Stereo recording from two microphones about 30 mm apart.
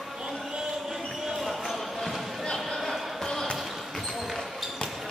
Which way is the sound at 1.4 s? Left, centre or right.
Centre.